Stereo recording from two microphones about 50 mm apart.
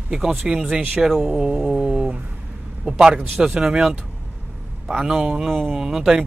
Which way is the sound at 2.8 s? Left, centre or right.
Centre.